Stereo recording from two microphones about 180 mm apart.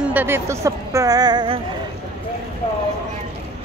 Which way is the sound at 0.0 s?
10° right (ahead or behind).